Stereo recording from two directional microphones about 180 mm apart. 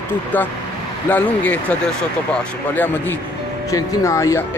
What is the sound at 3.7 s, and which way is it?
Speech, 20° left (ahead or behind).